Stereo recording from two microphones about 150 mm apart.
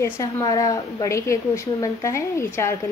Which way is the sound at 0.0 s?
25° left (ahead or behind).